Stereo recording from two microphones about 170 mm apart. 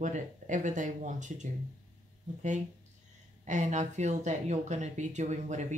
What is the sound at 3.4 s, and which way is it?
Speech, 45° right (ahead or behind).